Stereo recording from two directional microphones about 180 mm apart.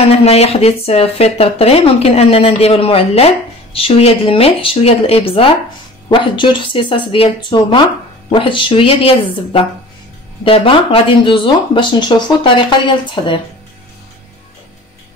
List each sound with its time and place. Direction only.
0.1 s speech: 35° left (ahead or behind)